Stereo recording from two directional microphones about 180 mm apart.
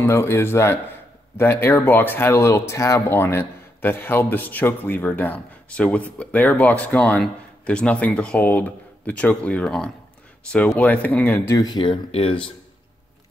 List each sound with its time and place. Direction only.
0.0 s speech: 15° left (ahead or behind); by 12.4 s 30° left (ahead or behind)